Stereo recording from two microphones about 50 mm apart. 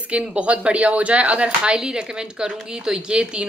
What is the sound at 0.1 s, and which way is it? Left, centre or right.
A woman's voice, right.